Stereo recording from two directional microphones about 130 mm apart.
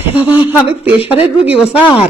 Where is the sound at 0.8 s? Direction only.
10° right (ahead or behind).